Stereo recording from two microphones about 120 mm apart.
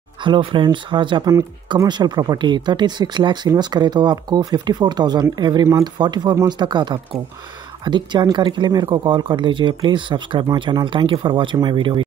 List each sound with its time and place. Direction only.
0.2 s speech: 45° right (ahead or behind)